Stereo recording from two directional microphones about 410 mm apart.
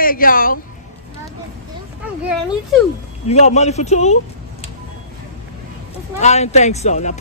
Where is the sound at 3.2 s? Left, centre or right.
Centre.